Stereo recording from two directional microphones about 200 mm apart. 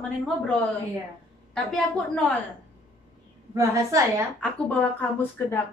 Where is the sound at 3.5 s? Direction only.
15° right (ahead or behind).